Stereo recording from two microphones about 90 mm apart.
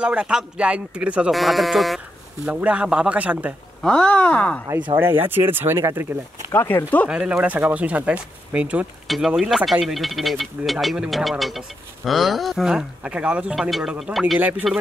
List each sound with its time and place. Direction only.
0.0 s speech: 10° right (ahead or behind)
1.3 s speech: centre (ahead or behind)
2.4 s speech: 15° right (ahead or behind)
3.8 s speech: 10° left (ahead or behind)
4.9 s speech: 25° right (ahead or behind)
6.5 s speech: 30° left (ahead or behind)
7.1 s speech: 10° right (ahead or behind)
9.0 s a sound: centre (ahead or behind)
9.3 s speech: 5° right (ahead or behind)
13.6 s speech: centre (ahead or behind)